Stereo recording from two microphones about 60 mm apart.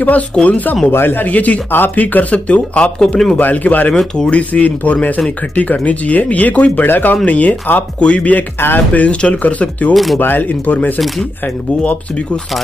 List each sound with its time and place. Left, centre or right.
0.0 s speech: left
0.9 s speech: left
3.9 s speech: centre
4.3 s speech: left
8.5 s speech: left
8.9 s speech: left